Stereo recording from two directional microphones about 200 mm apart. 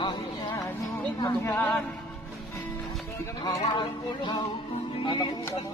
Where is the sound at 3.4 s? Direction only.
20° left (ahead or behind).